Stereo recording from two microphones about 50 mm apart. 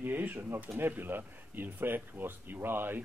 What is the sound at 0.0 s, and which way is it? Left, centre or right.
Speech, right.